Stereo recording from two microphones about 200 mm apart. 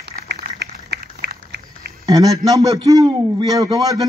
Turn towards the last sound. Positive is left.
turn(degrees=-20)  # may be behind; listen again after turning